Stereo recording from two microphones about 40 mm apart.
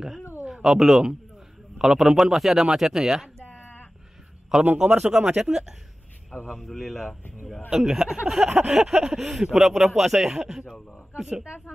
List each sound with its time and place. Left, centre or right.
0.5 s a man's voice: centre
4.5 s speech: centre
5.0 s speech: centre
6.4 s speech: centre
7.7 s a man's voice: centre
8.5 s a sound: right
8.7 s a man's voice: centre